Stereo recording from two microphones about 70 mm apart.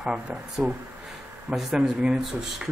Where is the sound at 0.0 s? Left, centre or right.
Centre.